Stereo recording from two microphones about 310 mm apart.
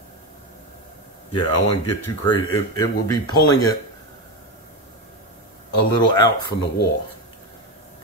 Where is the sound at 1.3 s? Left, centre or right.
Left.